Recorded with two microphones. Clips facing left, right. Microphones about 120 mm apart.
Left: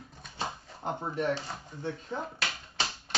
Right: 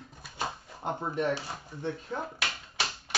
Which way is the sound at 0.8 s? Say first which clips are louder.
Right 1 dB; 20° right (ahead or behind).